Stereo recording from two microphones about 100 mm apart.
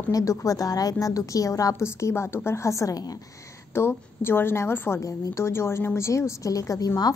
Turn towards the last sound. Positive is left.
turn(degrees=40)  # may be behind; listen again after turning